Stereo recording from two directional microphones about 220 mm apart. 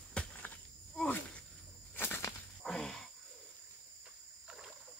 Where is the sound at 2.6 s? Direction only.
Centre (ahead or behind).